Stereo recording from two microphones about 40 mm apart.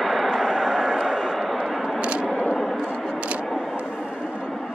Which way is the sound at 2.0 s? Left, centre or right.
Right.